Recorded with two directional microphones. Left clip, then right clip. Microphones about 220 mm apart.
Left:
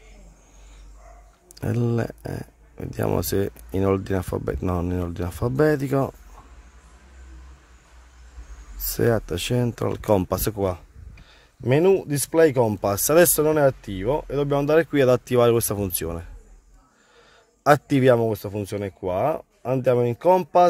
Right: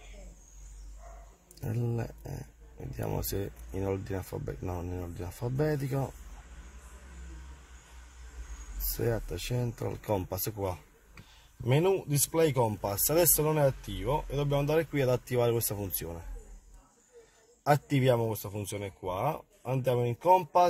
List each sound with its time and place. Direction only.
1.5 s speech: 35° left (ahead or behind)
8.9 s speech: 35° left (ahead or behind)
17.6 s speech: 40° left (ahead or behind)